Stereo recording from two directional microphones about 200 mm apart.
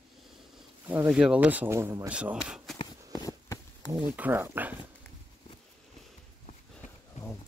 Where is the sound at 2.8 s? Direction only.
20° left (ahead or behind).